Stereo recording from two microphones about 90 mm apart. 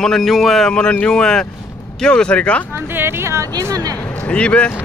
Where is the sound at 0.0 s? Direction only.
5° left (ahead or behind).